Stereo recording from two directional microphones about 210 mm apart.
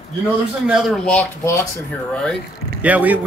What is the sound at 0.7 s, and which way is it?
Speech, centre (ahead or behind).